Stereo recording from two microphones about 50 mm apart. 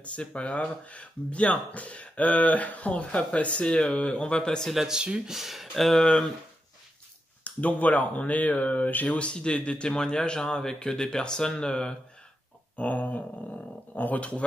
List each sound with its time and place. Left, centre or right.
0.0 s speech: left
4.8 s speech: centre
5.3 s speech: centre
7.4 s speech: left
12.7 s speech: left